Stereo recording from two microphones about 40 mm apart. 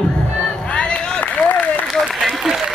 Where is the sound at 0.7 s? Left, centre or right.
Left.